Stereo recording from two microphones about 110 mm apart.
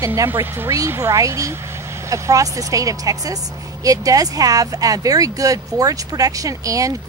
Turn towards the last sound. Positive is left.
turn(degrees=-30)  # may be behind; listen again after turning